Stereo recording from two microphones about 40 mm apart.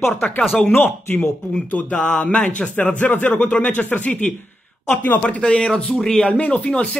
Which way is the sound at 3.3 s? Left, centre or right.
Left.